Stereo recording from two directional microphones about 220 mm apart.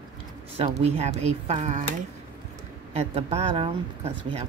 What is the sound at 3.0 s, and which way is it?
Speech, 30° right (ahead or behind).